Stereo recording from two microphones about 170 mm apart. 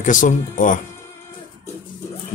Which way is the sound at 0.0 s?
50° left (ahead or behind).